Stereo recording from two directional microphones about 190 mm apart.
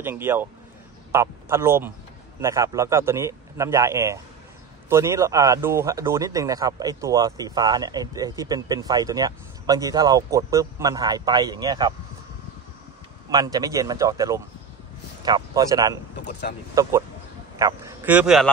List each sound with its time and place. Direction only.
0.0 s a man's voice: 10° right (ahead or behind)
13.3 s a man's voice: 20° right (ahead or behind); by 18.5 s centre (ahead or behind)